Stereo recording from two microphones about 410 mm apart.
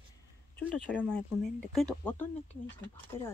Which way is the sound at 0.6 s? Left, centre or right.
Centre.